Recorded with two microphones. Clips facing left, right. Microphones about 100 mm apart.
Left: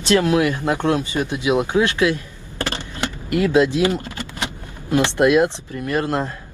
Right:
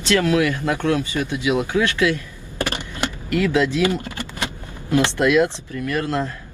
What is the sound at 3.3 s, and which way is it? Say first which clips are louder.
Speech: left 3 dB; 20° left (ahead or behind).